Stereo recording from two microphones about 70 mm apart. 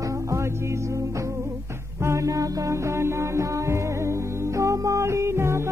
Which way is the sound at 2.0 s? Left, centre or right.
Right.